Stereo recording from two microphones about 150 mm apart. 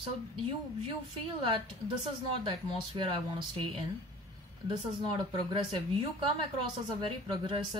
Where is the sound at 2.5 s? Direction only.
35° right (ahead or behind).